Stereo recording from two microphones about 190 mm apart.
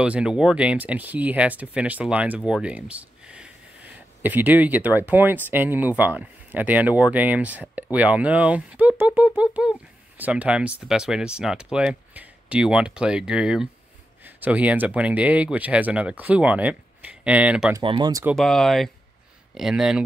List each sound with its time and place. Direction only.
0.0 s speech: 5° right (ahead or behind)
17.7 s speech: 25° right (ahead or behind)
18.3 s speech: centre (ahead or behind)